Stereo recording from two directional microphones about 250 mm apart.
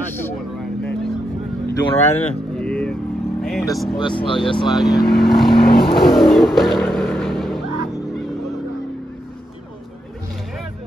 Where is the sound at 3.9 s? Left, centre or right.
Centre.